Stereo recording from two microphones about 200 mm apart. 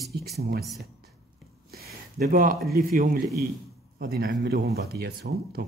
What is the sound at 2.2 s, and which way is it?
Speech, 45° right (ahead or behind).